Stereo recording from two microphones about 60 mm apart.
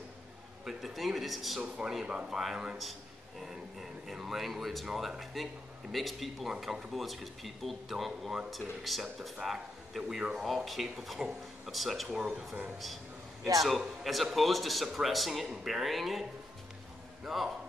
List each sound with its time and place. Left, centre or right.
0.7 s speech: centre
2.0 s speech: centre
2.8 s a man's voice: centre
12.2 s speech: centre
12.7 s a sound: centre
13.6 s a man's voice: centre
17.3 s a man's voice: centre